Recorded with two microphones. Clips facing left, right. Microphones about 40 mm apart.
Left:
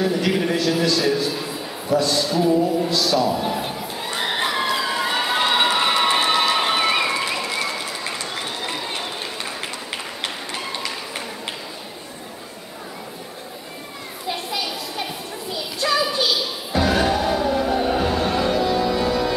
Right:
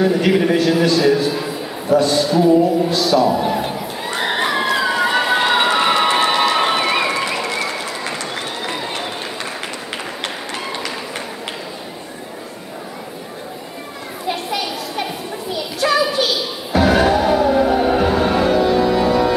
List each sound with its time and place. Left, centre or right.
0.0 s a man's voice: centre
2.2 s a man's voice: centre
2.9 s crowd: centre
8.4 s applause: centre
10.2 s tap: centre
14.5 s children playing: centre
15.5 s a sound: centre
16.7 s music: centre